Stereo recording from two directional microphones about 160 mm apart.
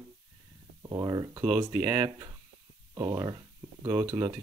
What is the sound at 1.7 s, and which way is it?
Speech, 10° right (ahead or behind).